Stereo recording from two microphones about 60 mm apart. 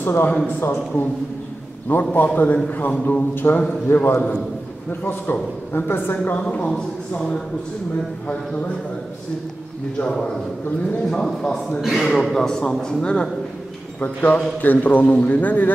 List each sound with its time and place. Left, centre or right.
0.0 s a man's voice: left
3.3 s a man's voice: left
6.4 s a man's voice: centre
11.1 s a man's voice: centre
13.9 s a man's voice: left